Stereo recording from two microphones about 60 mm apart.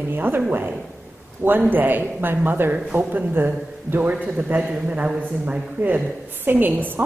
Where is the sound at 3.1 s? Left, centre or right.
Right.